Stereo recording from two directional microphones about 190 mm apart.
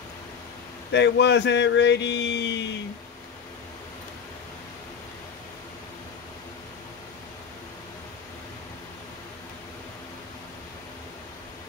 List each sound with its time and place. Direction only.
0.9 s speech: 65° left (ahead or behind)